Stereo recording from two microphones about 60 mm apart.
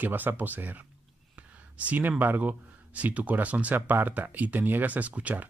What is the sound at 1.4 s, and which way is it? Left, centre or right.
Whispering, right.